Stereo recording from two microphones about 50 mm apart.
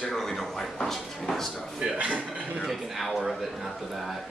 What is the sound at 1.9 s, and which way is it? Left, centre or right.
Speech, right.